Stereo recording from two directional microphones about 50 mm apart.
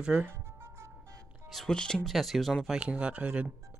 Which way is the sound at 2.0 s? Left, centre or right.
Centre.